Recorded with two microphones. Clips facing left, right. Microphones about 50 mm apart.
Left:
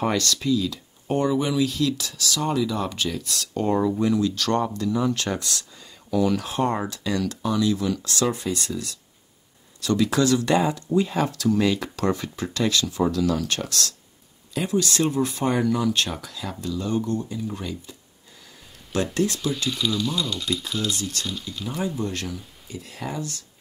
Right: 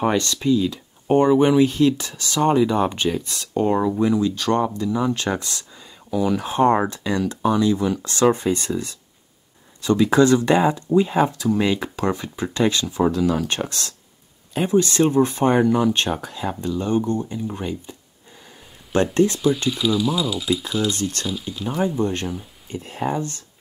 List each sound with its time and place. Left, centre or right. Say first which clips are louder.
0.0 s speech: right 3 dB; right
6.5 s speech: right 7 dB; right
18.9 s speech: right 6 dB; right
19.3 s speech: right 6 dB; centre
20.9 s speech: right 4 dB; right